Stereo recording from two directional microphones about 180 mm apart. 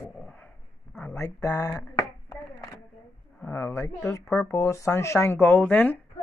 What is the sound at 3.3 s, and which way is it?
A woman's voice, 10° left (ahead or behind).